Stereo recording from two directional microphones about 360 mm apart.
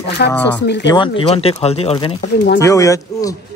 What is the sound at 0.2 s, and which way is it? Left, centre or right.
Speech, left.